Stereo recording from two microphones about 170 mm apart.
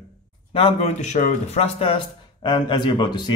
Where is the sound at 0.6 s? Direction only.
40° left (ahead or behind).